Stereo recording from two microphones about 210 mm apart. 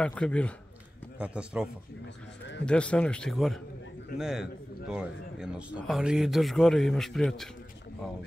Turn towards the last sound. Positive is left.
turn(degrees=0)  # may be behind; listen again after turning